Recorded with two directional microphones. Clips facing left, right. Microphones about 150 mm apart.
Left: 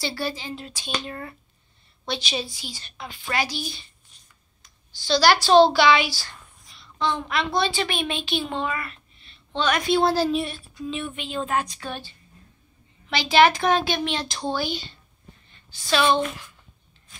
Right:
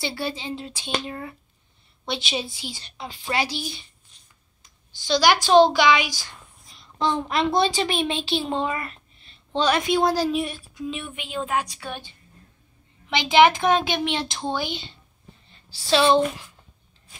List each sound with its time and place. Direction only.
0.0 s a woman's voice: 20° right (ahead or behind)
4.9 s a woman's voice: 20° right (ahead or behind)
6.7 s a sound: 40° right (ahead or behind)
7.8 s a woman's voice: 30° right (ahead or behind)
9.2 s a sound: 35° right (ahead or behind)
9.8 s a woman's voice: 15° right (ahead or behind)
15.5 s a woman's voice: 30° right (ahead or behind)